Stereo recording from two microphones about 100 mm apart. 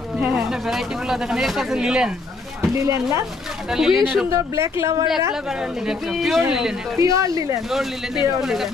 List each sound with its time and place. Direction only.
0.3 s speech: 5° right (ahead or behind)
2.7 s speech: 30° right (ahead or behind)
3.7 s speech: 5° right (ahead or behind)
4.3 s speech: 30° right (ahead or behind)
5.9 s speech: centre (ahead or behind)
7.0 s speech: 35° right (ahead or behind)
7.7 s speech: 5° right (ahead or behind)